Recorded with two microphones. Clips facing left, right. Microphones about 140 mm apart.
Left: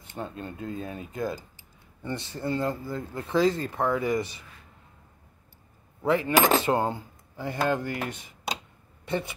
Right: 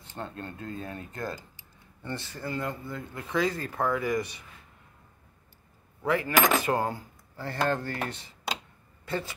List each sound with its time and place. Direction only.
0.0 s speech: 15° left (ahead or behind)
6.0 s speech: 25° left (ahead or behind)